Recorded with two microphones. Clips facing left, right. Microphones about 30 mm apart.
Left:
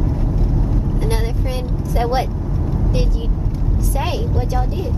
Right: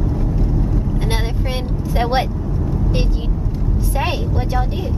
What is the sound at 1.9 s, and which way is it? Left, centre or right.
Vehicle, right.